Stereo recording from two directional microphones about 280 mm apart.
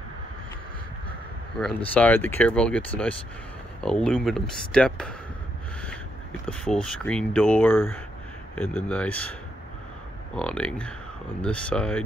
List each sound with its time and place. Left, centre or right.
1.6 s speech: centre
6.4 s speech: centre
10.3 s speech: centre